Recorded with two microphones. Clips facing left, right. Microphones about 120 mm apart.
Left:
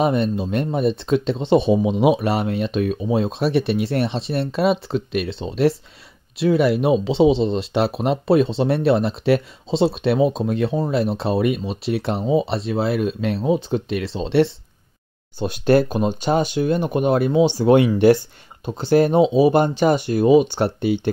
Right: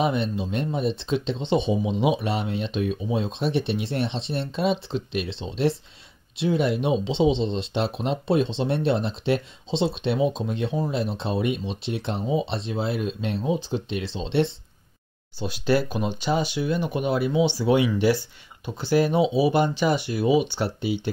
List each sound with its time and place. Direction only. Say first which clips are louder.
0.0 s speech: left 5 dB; 45° left (ahead or behind)
1.4 s speech: left 7 dB; 5° left (ahead or behind)
1.7 s speech: left 6 dB; 60° left (ahead or behind)
7.2 s speech: left 5 dB; 5° left (ahead or behind)
8.0 s speech: left 6 dB; 65° left (ahead or behind)
10.4 s speech: left 6 dB; 50° left (ahead or behind)
10.9 s speech: left 6 dB; 65° left (ahead or behind)
15.3 s speech: left 6 dB; 50° left (ahead or behind)